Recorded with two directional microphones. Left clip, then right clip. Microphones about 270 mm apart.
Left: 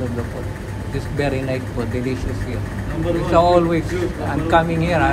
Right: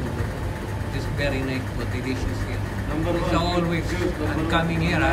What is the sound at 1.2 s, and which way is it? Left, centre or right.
Speech, centre.